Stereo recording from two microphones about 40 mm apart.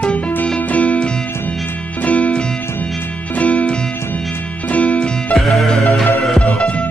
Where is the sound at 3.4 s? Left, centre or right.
Left.